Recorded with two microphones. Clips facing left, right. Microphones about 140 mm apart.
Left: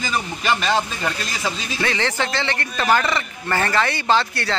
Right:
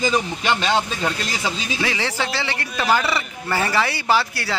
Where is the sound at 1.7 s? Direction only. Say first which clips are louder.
Left 4 dB; 10° right (ahead or behind).